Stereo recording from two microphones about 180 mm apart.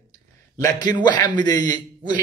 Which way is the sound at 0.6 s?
20° left (ahead or behind).